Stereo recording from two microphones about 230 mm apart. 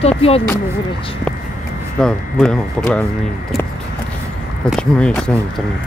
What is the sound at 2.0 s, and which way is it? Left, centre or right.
Speech, centre.